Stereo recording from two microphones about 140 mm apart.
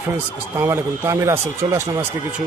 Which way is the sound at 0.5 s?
15° right (ahead or behind).